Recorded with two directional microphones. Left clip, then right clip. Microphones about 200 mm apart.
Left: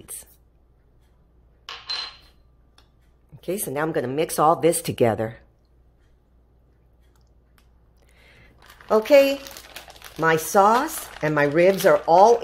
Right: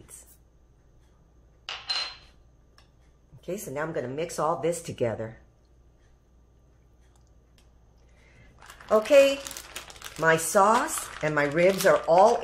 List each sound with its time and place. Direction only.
3.3 s speech: 55° left (ahead or behind)
8.8 s speech: 45° left (ahead or behind)